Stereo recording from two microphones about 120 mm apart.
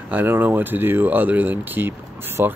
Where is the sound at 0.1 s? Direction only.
15° right (ahead or behind).